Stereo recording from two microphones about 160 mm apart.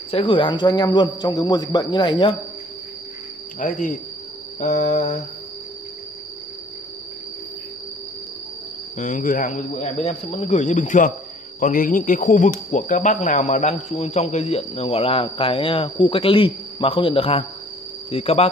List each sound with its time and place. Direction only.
0.1 s a man's voice: 35° left (ahead or behind)
3.5 s speech: 55° left (ahead or behind)
8.9 s speech: 50° left (ahead or behind)